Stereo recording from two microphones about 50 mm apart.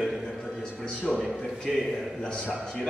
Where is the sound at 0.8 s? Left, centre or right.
Centre.